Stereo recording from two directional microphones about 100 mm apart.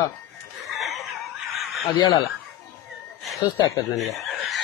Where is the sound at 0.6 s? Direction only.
Centre (ahead or behind).